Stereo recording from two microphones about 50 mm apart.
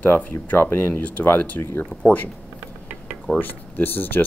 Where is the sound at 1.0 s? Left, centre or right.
Left.